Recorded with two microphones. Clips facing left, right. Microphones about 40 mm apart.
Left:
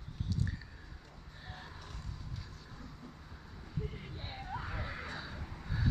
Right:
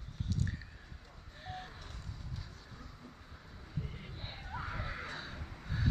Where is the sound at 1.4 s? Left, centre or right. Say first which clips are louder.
Right 5 dB; centre.